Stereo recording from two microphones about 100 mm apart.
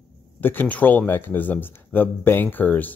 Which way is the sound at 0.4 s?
20° left (ahead or behind).